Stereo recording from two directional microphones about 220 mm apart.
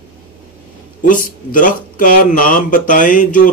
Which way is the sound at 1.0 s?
35° left (ahead or behind).